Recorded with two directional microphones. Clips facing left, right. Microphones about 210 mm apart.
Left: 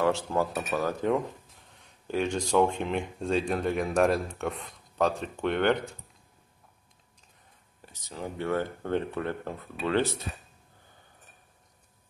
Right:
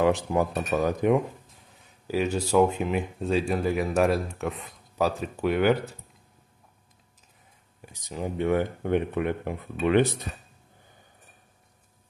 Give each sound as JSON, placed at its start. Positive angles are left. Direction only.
{"t": 0.0, "sound": "speech", "side_deg": -15}
{"t": 1.8, "sound": "speech", "side_deg": -5}
{"t": 7.8, "sound": "speech", "side_deg": -15}